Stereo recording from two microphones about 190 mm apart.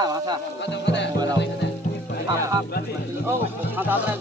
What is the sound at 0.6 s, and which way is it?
Music, 65° left (ahead or behind).